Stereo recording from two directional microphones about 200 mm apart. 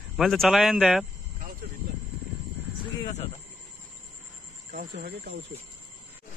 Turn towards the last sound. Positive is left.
turn(degrees=-45)  # may be behind; listen again after turning